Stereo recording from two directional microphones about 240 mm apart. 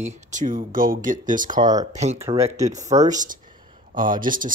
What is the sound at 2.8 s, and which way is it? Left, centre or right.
Speech, right.